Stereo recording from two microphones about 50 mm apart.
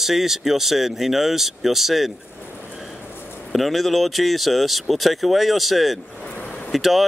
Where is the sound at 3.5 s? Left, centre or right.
Centre.